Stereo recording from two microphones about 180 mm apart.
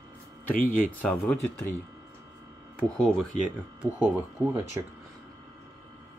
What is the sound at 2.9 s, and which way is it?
Speech, centre (ahead or behind).